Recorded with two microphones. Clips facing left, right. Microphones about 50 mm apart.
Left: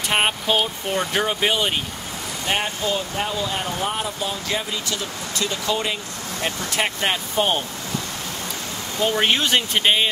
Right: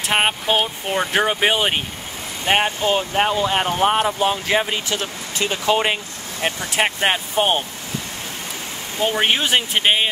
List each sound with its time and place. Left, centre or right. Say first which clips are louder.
0.1 s speech: right 2 dB; centre; by 5.9 s right
6.8 s speech: right 4 dB; right
9.0 s speech: right 1 dB; centre